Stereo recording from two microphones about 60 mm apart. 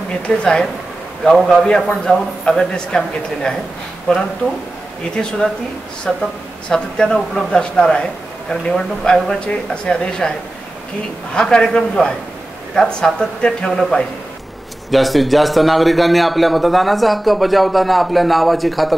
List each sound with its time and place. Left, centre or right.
0.3 s speech: centre
11.3 s a man's voice: centre